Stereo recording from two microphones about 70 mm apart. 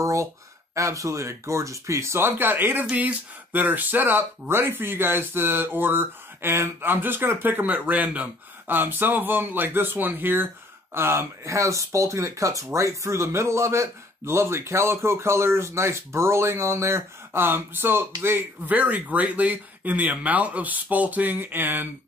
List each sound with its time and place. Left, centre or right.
0.0 s a sound: right
0.7 s speech: right
18.7 s speech: right